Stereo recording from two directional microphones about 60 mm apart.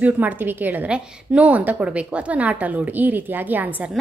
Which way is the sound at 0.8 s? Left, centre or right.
Centre.